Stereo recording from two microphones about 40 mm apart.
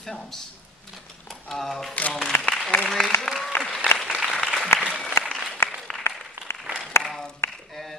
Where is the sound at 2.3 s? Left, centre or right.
Left.